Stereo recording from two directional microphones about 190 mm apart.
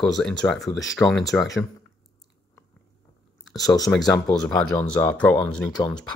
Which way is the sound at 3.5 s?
20° left (ahead or behind).